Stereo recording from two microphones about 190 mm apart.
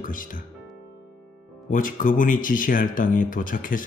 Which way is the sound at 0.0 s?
45° left (ahead or behind).